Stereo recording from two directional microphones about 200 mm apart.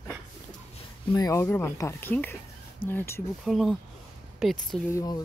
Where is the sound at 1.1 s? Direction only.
15° left (ahead or behind).